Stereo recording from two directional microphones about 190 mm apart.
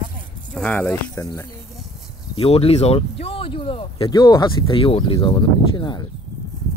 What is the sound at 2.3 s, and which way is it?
Speech, 30° left (ahead or behind).